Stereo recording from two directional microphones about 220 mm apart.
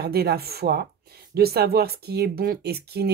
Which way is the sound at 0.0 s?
45° right (ahead or behind).